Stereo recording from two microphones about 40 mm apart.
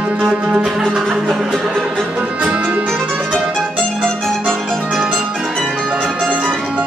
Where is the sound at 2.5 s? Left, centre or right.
Right.